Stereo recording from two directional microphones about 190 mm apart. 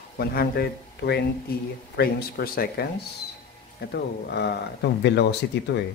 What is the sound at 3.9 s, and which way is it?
Speech, 60° left (ahead or behind).